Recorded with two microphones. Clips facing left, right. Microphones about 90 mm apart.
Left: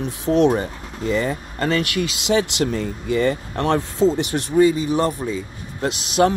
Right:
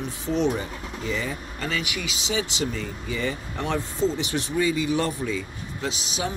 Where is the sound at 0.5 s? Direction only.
50° left (ahead or behind).